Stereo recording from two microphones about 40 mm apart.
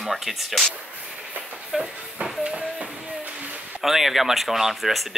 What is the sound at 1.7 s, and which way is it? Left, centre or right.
Speech, centre.